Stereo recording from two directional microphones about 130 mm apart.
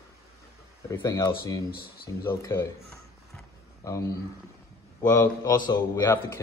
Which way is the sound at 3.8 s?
25° left (ahead or behind).